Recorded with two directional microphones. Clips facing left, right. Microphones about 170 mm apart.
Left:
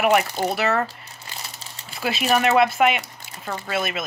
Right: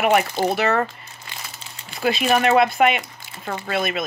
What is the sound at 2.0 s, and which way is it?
Speech, 5° left (ahead or behind).